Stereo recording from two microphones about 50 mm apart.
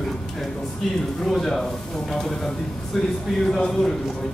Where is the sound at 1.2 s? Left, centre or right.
Centre.